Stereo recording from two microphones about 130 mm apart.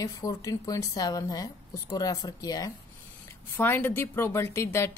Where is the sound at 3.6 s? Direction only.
15° left (ahead or behind).